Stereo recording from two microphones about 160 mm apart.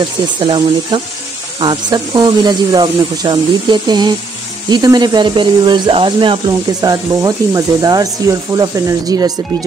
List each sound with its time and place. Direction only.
0.0 s speech: 30° right (ahead or behind)